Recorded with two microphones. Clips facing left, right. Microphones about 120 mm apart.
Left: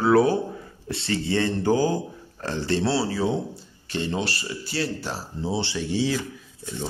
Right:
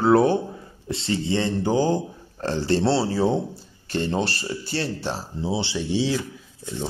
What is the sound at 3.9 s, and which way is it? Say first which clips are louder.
Speech: right 3 dB; 45° right (ahead or behind).